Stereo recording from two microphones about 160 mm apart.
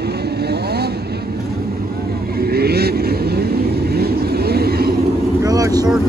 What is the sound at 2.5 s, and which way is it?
Vehicle, 80° right.